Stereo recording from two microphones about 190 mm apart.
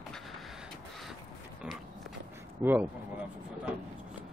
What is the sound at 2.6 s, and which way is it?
Speech, 10° right (ahead or behind).